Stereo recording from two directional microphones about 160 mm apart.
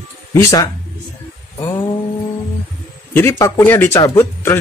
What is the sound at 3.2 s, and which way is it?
Speech, 15° left (ahead or behind).